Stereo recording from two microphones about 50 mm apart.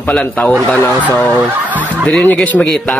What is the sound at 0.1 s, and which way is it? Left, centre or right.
Speech, left.